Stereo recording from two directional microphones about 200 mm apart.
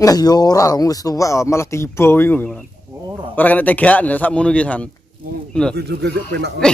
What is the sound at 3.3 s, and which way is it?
Speech, 10° left (ahead or behind).